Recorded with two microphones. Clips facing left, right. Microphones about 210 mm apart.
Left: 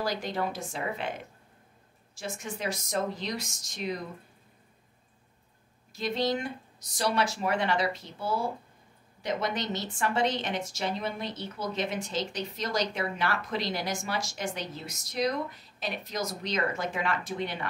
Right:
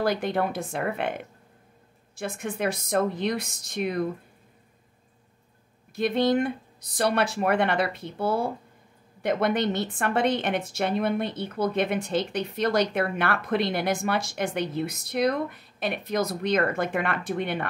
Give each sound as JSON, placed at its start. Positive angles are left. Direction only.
{"t": 0.0, "sound": "a woman's voice", "side_deg": -60}
{"t": 5.9, "sound": "a woman's voice", "side_deg": -55}